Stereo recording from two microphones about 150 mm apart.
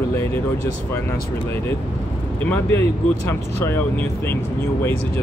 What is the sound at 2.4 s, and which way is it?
Speech, 15° left (ahead or behind).